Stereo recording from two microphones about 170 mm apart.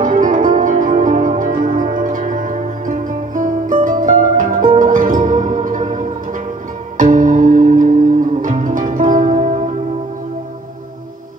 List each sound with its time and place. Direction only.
0.0 s music: 50° right (ahead or behind)